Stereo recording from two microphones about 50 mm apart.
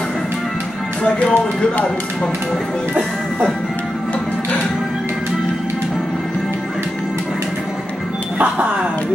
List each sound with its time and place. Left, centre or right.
1.0 s speech: left